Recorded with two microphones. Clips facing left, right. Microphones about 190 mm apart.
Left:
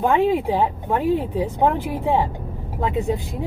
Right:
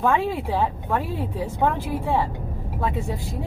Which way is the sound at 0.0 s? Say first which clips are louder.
Left 4 dB; 15° left (ahead or behind).